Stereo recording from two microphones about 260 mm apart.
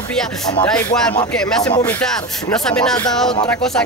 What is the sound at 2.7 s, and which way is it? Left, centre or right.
Music, centre.